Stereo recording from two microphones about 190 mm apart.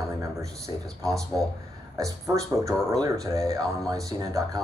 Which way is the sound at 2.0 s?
15° right (ahead or behind).